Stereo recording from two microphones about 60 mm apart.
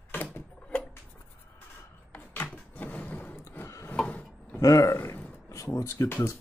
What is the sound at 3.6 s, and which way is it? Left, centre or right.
Wood, left.